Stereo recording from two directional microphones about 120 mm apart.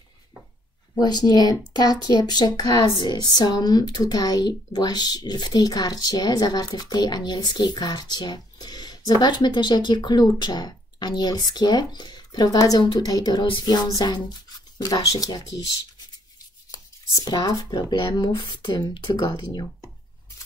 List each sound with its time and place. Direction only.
0.9 s speech: 35° left (ahead or behind)
16.7 s speech: 30° left (ahead or behind)